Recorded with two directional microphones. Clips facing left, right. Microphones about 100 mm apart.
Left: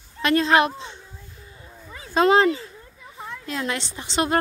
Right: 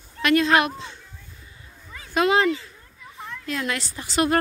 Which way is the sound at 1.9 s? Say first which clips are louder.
Left 3 dB; 25° left (ahead or behind).